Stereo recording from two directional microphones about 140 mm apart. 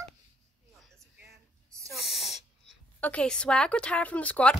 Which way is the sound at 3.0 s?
10° left (ahead or behind).